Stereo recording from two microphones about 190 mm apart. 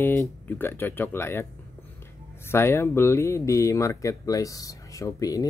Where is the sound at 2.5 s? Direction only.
10° left (ahead or behind).